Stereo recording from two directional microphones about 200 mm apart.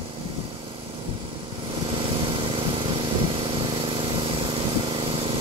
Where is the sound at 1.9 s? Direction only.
25° right (ahead or behind).